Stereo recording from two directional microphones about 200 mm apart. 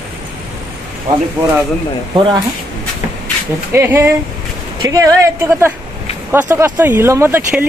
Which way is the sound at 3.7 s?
10° right (ahead or behind).